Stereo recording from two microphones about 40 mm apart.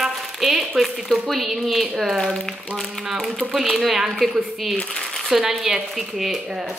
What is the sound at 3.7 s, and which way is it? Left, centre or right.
Speech, centre.